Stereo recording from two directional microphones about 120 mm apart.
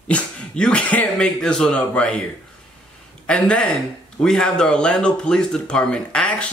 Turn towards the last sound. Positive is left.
turn(degrees=10)  # may be behind; listen again after turning